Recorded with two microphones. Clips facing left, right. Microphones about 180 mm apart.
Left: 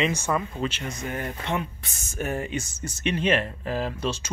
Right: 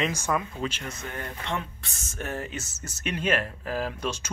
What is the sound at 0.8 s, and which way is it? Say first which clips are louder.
Speech: left 5 dB; 15° left (ahead or behind).